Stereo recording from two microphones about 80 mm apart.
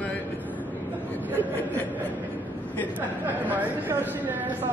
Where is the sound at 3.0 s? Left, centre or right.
Right.